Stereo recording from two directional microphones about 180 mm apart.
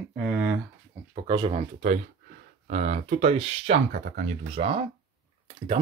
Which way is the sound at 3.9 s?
55° right (ahead or behind).